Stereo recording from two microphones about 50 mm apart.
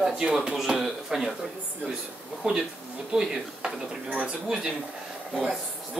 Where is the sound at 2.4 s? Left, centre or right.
Right.